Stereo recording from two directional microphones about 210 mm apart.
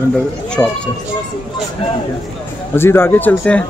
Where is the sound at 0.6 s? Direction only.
10° left (ahead or behind).